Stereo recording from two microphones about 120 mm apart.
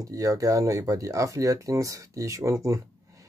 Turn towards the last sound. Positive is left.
turn(degrees=-25)  # may be behind; listen again after turning